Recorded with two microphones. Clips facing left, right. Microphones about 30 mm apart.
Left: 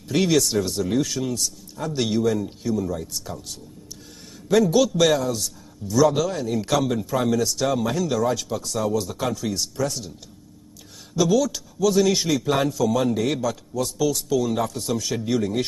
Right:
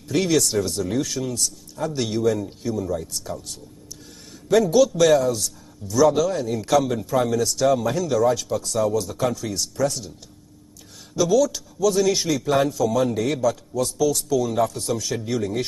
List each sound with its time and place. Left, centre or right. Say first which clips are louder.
0.1 s a man's voice: even; centre
8.9 s a man's voice: right 2 dB; centre
11.1 s a man's voice: right 1 dB; centre